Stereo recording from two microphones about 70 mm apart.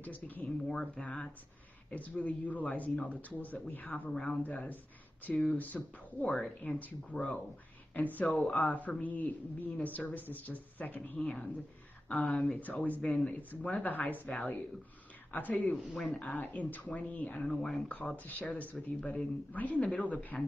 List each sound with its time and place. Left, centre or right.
0.0 s speech: left
0.7 s a woman's voice: centre
4.1 s speech: centre
4.4 s a woman's voice: left
8.3 s speech: centre
8.5 s a woman's voice: left
17.4 s speech: centre
17.8 s a woman's voice: left